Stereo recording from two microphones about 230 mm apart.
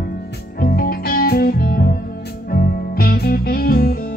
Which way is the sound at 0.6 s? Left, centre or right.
Left.